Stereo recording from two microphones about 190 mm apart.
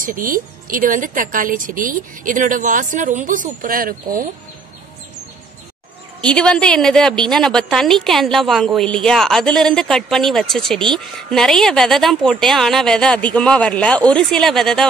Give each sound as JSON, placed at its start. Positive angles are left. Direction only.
{"t": 0.0, "sound": "a woman's voice", "side_deg": -45}
{"t": 6.2, "sound": "a woman's voice", "side_deg": 5}